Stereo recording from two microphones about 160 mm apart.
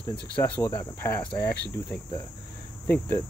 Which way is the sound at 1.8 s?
20° left (ahead or behind).